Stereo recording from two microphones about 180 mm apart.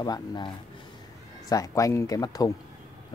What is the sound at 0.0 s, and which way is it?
Speech, 20° left (ahead or behind).